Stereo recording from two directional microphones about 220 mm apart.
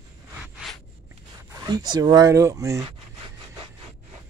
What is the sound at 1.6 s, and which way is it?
Speech, 20° right (ahead or behind).